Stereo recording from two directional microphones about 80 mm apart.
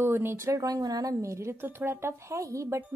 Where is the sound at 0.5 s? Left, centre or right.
Right.